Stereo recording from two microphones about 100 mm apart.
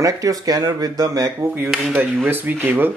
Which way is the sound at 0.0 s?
35° right (ahead or behind).